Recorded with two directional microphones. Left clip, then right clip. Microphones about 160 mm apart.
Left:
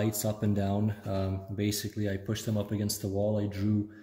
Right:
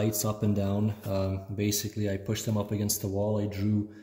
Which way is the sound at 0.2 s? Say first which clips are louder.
Right 1 dB; 10° right (ahead or behind).